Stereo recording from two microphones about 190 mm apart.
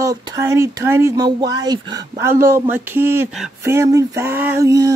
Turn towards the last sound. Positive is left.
turn(degrees=-15)  # may be behind; listen again after turning